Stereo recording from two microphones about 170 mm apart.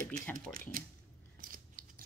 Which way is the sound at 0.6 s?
55° right (ahead or behind).